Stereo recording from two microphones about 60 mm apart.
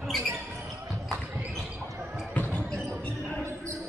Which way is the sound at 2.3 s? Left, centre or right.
Left.